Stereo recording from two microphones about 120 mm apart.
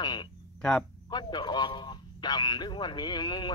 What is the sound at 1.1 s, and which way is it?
Speech, 35° left (ahead or behind).